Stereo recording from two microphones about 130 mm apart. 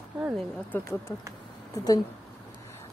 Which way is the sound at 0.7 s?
20° left (ahead or behind).